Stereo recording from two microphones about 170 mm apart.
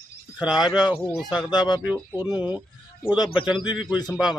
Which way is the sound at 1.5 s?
25° left (ahead or behind).